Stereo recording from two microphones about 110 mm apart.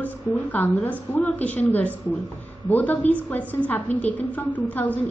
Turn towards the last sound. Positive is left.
turn(degrees=15)  # may be behind; listen again after turning